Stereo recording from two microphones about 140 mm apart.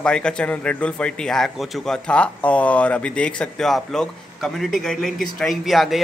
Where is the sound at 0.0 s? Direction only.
5° left (ahead or behind).